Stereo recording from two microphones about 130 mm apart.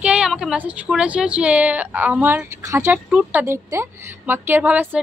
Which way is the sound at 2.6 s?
25° right (ahead or behind).